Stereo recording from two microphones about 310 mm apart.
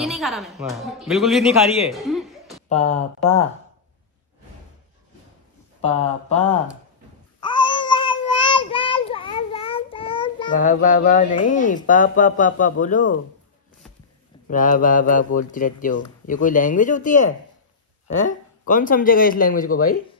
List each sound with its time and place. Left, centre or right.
0.0 s a woman's voice: centre
1.9 s chuckle: centre
2.7 s speech: left
5.8 s speech: left
7.4 s child singing: centre
11.5 s speech: left
14.5 s speech: left